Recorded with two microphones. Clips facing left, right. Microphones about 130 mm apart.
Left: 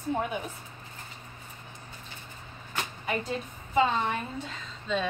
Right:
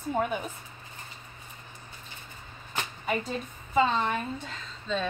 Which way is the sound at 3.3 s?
5° left (ahead or behind).